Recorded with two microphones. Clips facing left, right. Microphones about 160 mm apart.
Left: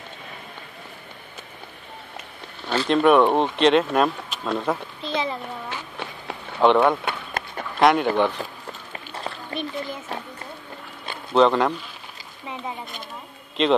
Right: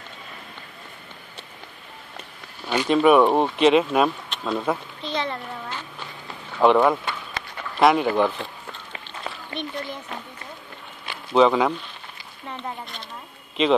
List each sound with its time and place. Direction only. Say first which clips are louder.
2.7 s a woman's voice: even; 10° right (ahead or behind)
7.1 s a sound: left 3 dB; 55° left (ahead or behind)
7.8 s a woman's voice: even; centre (ahead or behind)
8.9 s duck: left 2 dB; 35° left (ahead or behind)
11.3 s a woman's voice: even; centre (ahead or behind)